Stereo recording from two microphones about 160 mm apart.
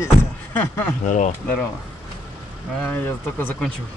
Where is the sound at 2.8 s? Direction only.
10° left (ahead or behind).